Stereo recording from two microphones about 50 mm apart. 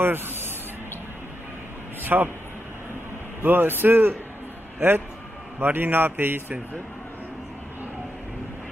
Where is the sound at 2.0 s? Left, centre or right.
Right.